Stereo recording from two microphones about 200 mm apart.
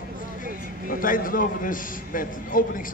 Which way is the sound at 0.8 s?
45° left (ahead or behind).